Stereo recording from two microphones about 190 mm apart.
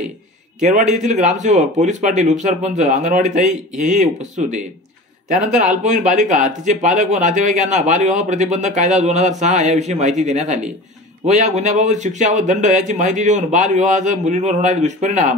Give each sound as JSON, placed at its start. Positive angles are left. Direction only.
{"t": 0.6, "sound": "speech", "side_deg": -40}
{"t": 5.7, "sound": "speech", "side_deg": -40}